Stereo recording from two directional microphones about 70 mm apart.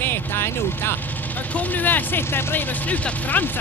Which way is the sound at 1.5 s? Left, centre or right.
Left.